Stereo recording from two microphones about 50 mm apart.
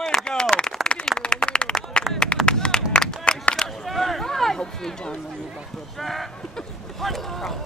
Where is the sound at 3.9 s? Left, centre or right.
Centre.